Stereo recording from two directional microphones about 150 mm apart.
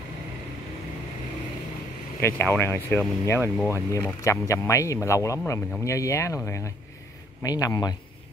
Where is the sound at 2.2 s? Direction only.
15° left (ahead or behind).